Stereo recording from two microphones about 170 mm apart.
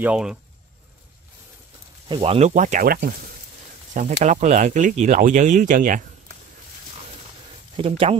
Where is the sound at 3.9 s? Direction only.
45° right (ahead or behind).